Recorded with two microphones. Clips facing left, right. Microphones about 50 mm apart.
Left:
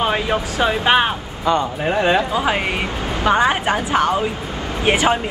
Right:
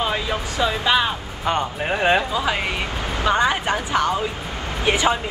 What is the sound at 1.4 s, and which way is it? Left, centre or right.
Speech, right.